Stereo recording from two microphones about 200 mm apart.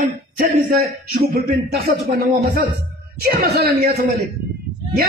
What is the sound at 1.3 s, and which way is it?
Speech, 50° right (ahead or behind).